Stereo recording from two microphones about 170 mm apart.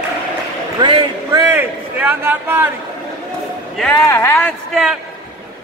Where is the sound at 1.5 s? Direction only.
10° right (ahead or behind).